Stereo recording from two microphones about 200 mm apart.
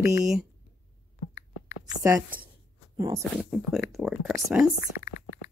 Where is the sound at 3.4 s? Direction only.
Centre (ahead or behind).